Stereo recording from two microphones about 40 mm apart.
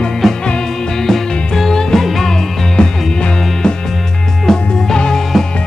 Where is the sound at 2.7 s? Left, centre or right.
Left.